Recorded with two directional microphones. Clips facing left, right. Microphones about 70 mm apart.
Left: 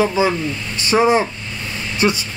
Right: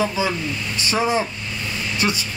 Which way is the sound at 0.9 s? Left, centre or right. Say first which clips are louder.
Left 6 dB; left.